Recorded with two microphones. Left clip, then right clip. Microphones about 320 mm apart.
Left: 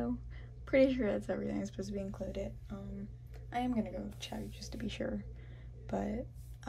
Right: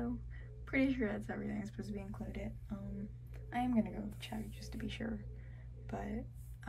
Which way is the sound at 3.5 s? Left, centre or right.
Centre.